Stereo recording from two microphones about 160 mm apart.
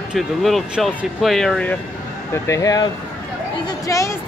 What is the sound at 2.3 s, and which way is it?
Speech, 20° left (ahead or behind).